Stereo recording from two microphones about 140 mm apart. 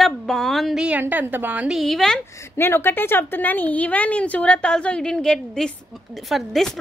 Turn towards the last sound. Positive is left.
turn(degrees=0)  # may be behind; listen again after turning